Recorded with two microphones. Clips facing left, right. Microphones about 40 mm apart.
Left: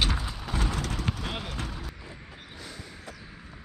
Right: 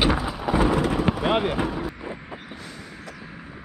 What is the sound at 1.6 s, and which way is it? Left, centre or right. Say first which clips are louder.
Vehicle: right 11 dB; centre.